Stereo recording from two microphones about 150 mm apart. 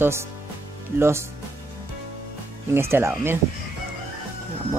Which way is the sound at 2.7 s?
15° right (ahead or behind).